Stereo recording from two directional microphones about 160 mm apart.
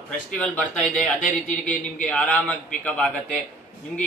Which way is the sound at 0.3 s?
10° left (ahead or behind).